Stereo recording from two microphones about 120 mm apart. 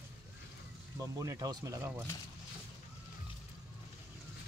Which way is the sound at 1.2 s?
30° right (ahead or behind).